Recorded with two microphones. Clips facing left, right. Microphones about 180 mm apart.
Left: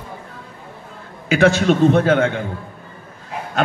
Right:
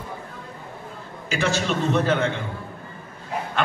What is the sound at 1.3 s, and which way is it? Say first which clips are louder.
A man's voice: left 10 dB; 55° left (ahead or behind).